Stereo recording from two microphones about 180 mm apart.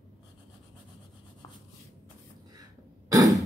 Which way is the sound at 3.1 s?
20° right (ahead or behind).